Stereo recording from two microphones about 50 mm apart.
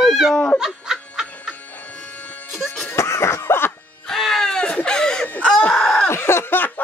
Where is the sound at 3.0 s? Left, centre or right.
Left.